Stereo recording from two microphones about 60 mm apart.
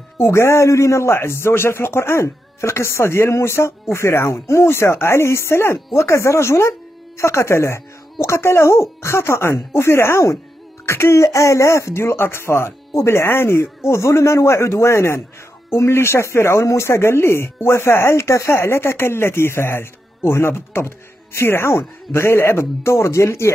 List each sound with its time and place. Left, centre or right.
0.2 s speech: left
11.2 s speech: left